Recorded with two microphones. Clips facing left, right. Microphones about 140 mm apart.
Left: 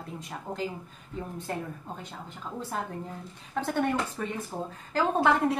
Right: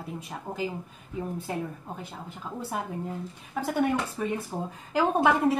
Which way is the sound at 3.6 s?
5° right (ahead or behind).